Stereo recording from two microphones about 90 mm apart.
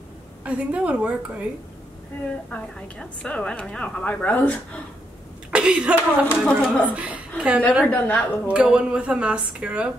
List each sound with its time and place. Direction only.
0.5 s speech: 15° right (ahead or behind)
2.5 s a woman's voice: 10° left (ahead or behind)
5.5 s speech: 10° right (ahead or behind)
6.4 s a woman's voice: 10° left (ahead or behind)
6.9 s a woman's voice: 15° right (ahead or behind)
7.8 s a woman's voice: 25° left (ahead or behind)
8.5 s speech: 10° right (ahead or behind)